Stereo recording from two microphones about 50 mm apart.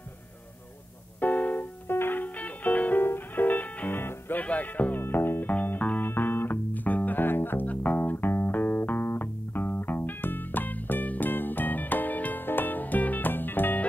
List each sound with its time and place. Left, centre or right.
1.2 s keyboard: left
1.9 s music: left
2.2 s music: left
3.0 s music: left
3.9 s music: left
4.4 s music: left
5.0 s music: left
5.5 s music: left
7.6 s music: left